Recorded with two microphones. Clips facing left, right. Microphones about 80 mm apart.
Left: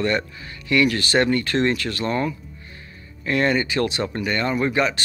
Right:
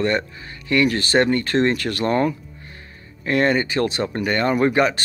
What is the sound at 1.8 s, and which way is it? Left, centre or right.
Speech, right.